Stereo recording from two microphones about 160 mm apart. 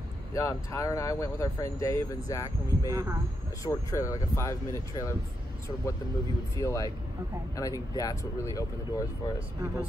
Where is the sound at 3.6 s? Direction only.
20° left (ahead or behind).